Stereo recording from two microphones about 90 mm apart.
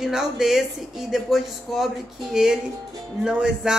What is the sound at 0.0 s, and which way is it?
Speech, 5° right (ahead or behind).